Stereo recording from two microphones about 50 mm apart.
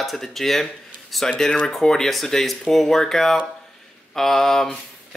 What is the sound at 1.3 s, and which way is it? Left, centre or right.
Speech, centre.